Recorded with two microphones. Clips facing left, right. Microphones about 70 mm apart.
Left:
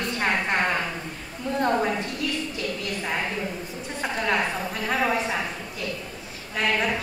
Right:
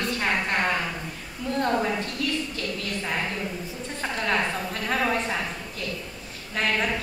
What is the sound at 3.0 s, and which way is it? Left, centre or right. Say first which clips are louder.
A woman's voice: left 1 dB; centre.